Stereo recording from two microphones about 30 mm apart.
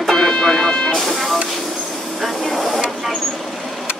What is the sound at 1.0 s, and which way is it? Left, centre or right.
Music, centre.